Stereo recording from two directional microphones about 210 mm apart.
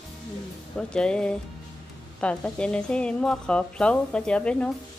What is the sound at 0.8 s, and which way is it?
A woman's voice, 5° left (ahead or behind).